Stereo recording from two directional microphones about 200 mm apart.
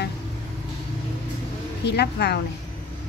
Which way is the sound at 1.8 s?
55° left (ahead or behind).